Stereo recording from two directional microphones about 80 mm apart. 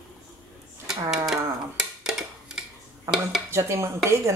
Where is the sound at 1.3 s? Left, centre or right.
Centre.